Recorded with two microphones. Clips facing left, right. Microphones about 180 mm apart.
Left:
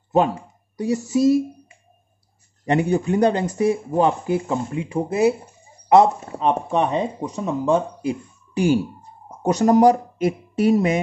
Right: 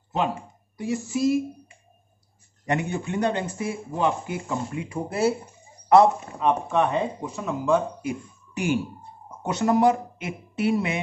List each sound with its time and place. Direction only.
0.7 s speech: 40° left (ahead or behind)
2.6 s speech: 35° left (ahead or behind)